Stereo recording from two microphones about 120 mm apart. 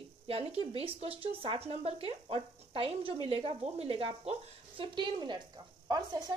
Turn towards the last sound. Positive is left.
turn(degrees=-35)  # may be behind; listen again after turning